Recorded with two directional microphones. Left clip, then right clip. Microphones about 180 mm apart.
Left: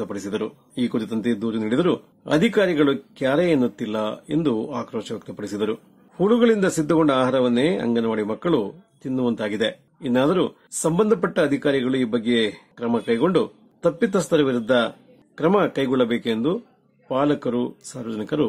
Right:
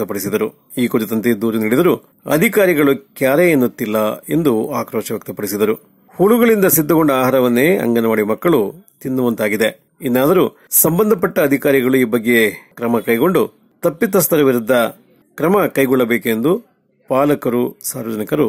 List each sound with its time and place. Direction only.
0.0 s speech: 30° right (ahead or behind)